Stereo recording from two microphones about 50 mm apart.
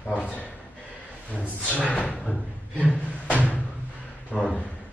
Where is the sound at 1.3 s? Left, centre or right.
Left.